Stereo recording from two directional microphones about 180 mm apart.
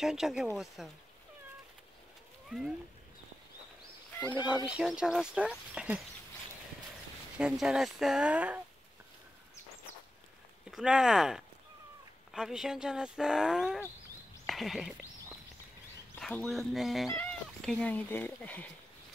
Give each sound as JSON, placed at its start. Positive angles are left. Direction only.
{"t": 0.0, "sound": "speech", "side_deg": -5}
{"t": 4.6, "sound": "speech", "side_deg": -5}
{"t": 7.3, "sound": "speech", "side_deg": -5}
{"t": 10.7, "sound": "speech", "side_deg": -5}
{"t": 16.2, "sound": "speech", "side_deg": 5}